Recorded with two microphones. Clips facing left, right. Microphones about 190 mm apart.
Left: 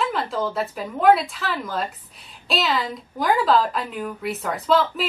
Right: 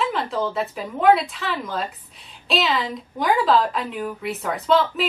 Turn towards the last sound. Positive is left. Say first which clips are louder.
# right 1 dB
turn(degrees=0)  # may be behind; listen again after turning